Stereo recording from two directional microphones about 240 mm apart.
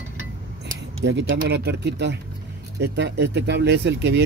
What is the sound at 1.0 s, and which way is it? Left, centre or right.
Speech, right.